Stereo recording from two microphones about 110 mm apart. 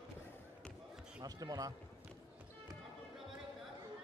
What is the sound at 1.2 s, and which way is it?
Speech, 35° right (ahead or behind).